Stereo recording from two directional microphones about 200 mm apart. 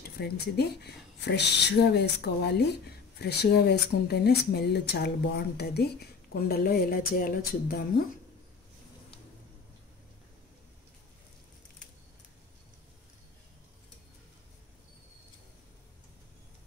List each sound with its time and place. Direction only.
0.0 s speech: 55° left (ahead or behind)